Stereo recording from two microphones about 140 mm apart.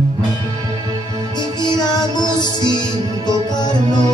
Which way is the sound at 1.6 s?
30° left (ahead or behind).